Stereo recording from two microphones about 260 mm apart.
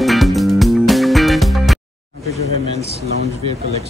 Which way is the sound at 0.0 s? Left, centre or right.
Centre.